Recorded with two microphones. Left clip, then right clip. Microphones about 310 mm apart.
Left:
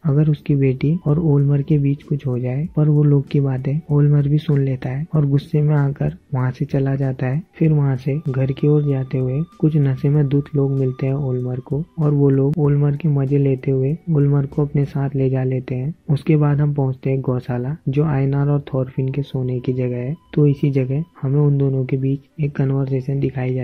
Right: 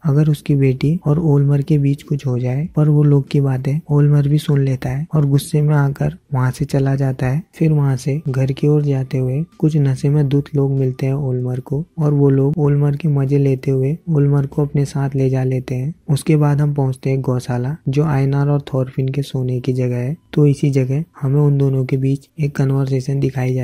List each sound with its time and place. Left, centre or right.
0.0 s speech: right